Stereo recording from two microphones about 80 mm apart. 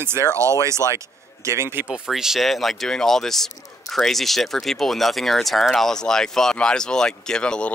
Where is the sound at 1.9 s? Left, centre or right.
Centre.